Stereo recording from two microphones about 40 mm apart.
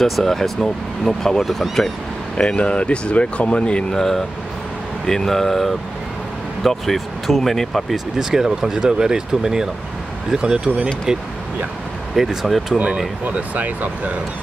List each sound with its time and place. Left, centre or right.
0.0 s speech: centre
1.4 s speech: centre
2.3 s speech: left
3.9 s speech: centre
7.9 s speech: centre
13.2 s speech: right